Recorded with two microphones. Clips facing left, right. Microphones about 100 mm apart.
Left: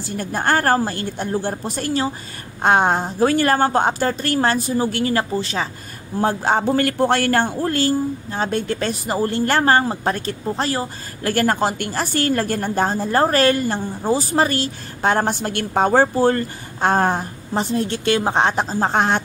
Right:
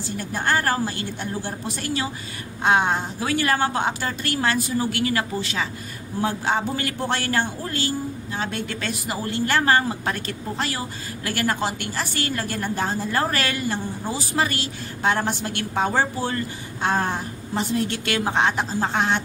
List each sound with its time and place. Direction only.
0.2 s a woman's voice: 45° left (ahead or behind)
17.7 s a man's voice: 30° left (ahead or behind)